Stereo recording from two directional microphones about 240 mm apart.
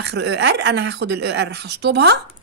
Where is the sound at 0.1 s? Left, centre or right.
Right.